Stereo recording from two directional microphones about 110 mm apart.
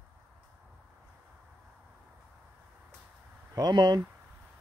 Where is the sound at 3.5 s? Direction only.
40° right (ahead or behind).